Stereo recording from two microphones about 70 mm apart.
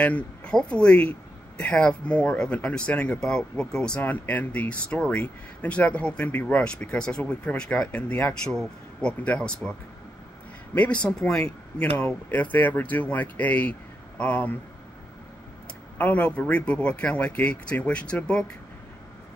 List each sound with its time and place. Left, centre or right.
0.0 s speech: left
4.0 s speech: left
8.5 s speech: centre
12.3 s speech: left
16.0 s speech: left